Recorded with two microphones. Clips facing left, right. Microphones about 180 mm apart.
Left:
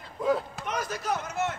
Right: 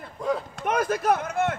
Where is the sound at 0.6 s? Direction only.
55° right (ahead or behind).